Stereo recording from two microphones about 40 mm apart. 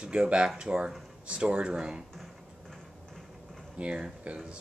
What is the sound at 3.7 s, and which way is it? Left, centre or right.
Speech, right.